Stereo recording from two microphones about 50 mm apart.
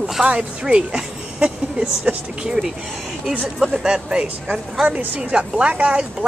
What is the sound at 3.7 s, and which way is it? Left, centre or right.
A woman's voice, centre.